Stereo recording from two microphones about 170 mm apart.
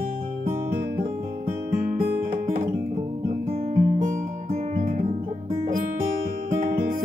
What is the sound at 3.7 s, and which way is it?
Music, 45° right (ahead or behind).